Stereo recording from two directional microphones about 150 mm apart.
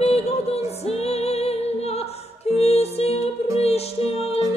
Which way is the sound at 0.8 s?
45° left (ahead or behind).